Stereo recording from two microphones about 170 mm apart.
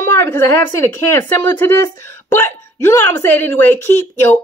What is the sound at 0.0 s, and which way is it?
Speech, 15° left (ahead or behind).